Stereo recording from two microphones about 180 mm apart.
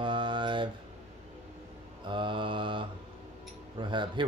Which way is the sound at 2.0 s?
25° right (ahead or behind).